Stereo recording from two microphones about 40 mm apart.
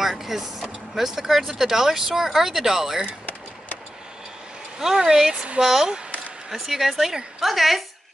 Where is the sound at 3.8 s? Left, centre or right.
Centre.